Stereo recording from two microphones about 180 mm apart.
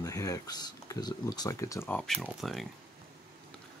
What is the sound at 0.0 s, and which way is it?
Speech, 20° left (ahead or behind).